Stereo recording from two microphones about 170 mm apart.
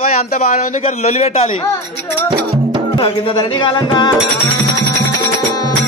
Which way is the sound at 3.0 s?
30° left (ahead or behind).